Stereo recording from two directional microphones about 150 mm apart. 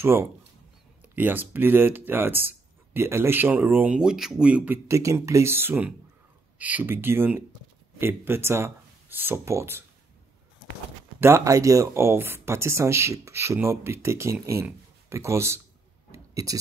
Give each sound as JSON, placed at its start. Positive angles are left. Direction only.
{"t": 0.0, "sound": "speech", "side_deg": -15}
{"t": 4.8, "sound": "speech", "side_deg": -20}
{"t": 11.1, "sound": "speech", "side_deg": -15}
{"t": 16.1, "sound": "clicking", "side_deg": -20}